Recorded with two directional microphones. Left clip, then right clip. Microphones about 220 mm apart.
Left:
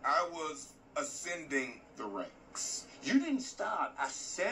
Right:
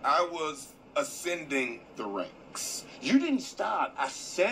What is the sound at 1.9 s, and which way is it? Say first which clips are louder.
A man's voice: right 6 dB; 35° right (ahead or behind).